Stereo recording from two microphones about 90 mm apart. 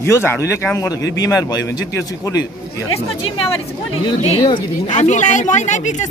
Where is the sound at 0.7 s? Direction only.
40° left (ahead or behind).